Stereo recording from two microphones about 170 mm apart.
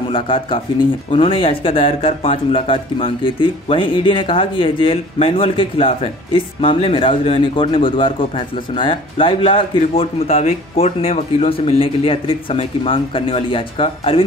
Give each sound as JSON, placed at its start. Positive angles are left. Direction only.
{"t": 0.1, "sound": "speech", "side_deg": 30}